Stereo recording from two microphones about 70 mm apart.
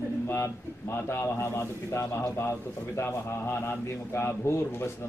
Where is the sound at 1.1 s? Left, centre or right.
Left.